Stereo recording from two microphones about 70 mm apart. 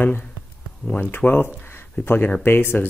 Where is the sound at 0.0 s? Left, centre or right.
Left.